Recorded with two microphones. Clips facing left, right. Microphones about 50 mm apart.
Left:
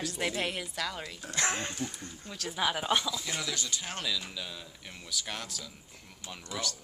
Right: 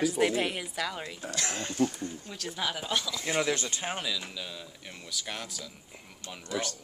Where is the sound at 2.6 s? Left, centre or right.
Centre.